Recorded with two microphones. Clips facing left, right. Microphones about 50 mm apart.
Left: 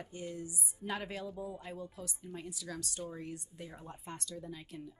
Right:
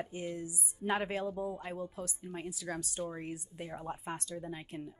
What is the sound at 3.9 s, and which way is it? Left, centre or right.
Speech, centre.